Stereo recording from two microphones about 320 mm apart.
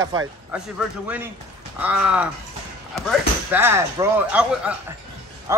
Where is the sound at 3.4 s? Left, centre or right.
Centre.